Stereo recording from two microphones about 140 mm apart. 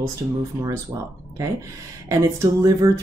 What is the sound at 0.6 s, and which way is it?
Speech, 15° right (ahead or behind).